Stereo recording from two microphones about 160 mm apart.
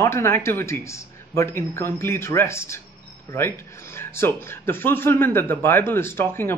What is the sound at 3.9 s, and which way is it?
Speech, 15° left (ahead or behind).